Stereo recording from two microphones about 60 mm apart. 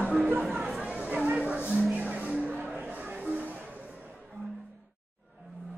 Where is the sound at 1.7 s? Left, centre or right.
Right.